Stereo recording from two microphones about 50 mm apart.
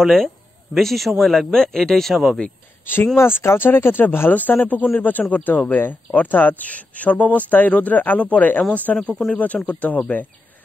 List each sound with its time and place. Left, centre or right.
0.0 s speech: centre
3.2 s speech: left
4.3 s speech: left